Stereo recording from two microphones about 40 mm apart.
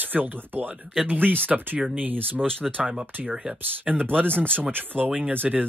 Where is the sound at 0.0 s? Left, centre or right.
Right.